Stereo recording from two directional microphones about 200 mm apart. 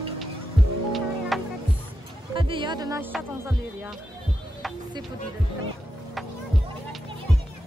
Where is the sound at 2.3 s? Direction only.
25° right (ahead or behind).